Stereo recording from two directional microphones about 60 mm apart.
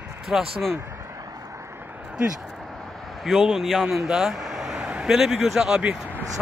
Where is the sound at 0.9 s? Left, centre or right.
Right.